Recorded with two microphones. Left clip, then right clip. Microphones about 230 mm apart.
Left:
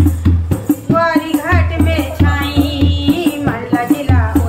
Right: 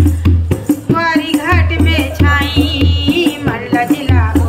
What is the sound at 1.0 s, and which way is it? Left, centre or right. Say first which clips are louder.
Music: left 1 dB; right.